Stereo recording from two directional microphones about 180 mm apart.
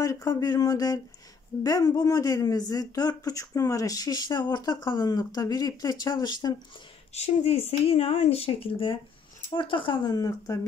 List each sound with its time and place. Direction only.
0.0 s speech: 20° left (ahead or behind)
7.2 s speech: 35° left (ahead or behind); by 10.6 s 20° left (ahead or behind)